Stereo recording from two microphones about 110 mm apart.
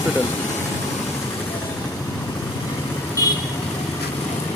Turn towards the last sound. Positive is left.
turn(degrees=35)  # may be behind; listen again after turning